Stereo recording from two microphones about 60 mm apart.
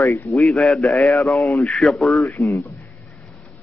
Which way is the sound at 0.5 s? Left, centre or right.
Centre.